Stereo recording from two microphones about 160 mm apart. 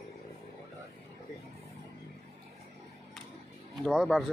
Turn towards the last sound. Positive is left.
turn(degrees=0)  # may be behind; listen again after turning